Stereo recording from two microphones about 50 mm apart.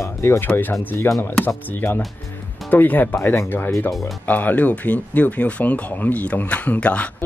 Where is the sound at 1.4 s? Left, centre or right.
Left.